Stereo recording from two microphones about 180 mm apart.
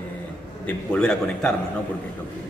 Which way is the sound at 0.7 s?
5° left (ahead or behind).